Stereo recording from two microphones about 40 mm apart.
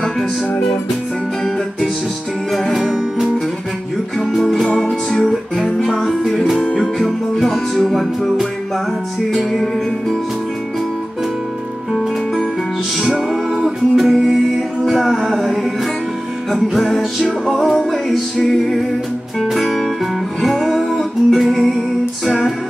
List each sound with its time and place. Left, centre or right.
2.5 s music: centre
4.4 s music: centre
13.0 s music: centre